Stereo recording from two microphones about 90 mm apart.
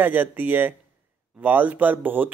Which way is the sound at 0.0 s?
20° right (ahead or behind).